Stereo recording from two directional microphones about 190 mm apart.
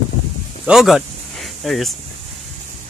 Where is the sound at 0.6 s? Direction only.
Centre (ahead or behind).